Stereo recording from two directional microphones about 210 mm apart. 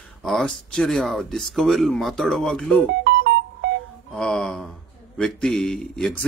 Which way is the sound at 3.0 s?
50° right (ahead or behind).